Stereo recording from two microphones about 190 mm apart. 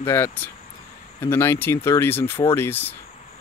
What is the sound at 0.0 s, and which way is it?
Speech, 15° left (ahead or behind).